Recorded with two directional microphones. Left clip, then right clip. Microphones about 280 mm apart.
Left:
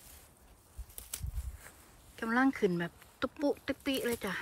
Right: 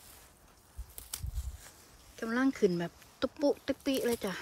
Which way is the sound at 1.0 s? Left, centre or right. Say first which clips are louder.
Right 1 dB; centre.